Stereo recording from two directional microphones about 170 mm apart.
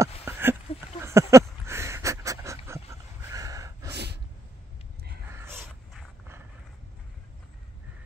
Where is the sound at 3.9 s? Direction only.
75° right (ahead or behind).